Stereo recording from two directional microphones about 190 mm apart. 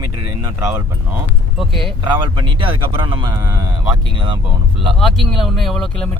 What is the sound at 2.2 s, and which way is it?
A man's voice, 25° right (ahead or behind).